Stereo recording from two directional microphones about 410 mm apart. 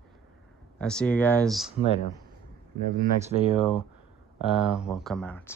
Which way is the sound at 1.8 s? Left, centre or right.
Centre.